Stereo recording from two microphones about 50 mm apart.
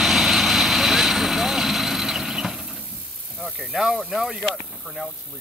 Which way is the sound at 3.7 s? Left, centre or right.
Centre.